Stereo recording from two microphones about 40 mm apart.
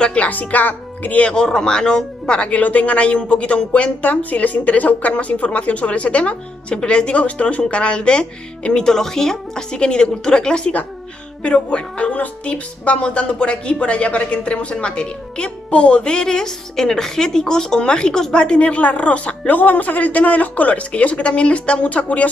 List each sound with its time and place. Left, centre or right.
0.0 s speech: left
1.2 s a woman's voice: left